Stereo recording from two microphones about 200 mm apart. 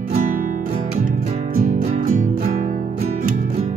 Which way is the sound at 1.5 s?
45° right (ahead or behind).